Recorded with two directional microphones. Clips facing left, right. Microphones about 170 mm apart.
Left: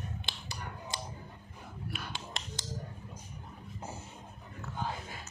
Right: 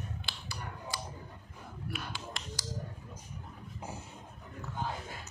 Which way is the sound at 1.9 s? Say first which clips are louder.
Right 1 dB; 25° left (ahead or behind).